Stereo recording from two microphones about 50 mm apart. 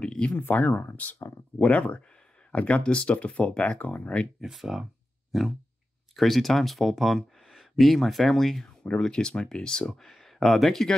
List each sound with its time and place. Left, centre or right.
0.0 s speech: left
0.4 s speech: left
1.6 s speech: left
4.4 s speech: centre
8.8 s speech: centre